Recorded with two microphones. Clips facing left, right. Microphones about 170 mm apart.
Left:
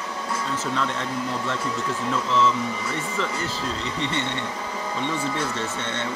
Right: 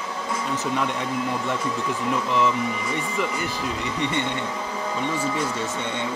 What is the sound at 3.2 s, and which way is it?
Speech, 15° right (ahead or behind).